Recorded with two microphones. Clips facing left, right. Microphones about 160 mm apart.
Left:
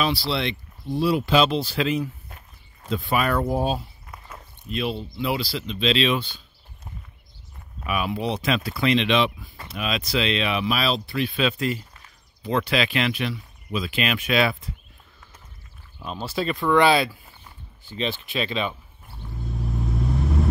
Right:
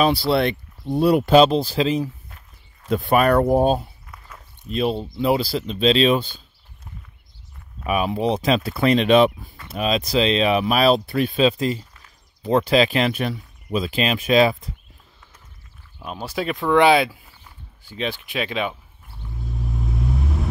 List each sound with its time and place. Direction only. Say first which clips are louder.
0.0 s speech: right 6 dB; 50° right (ahead or behind)
1.4 s speech: right 5 dB; 40° right (ahead or behind)
2.9 s speech: right 6 dB; 50° right (ahead or behind)
7.8 s speech: right 5 dB; 35° right (ahead or behind)
16.0 s speech: right 1 dB; 10° right (ahead or behind)
19.3 s vehicle: even; centre (ahead or behind)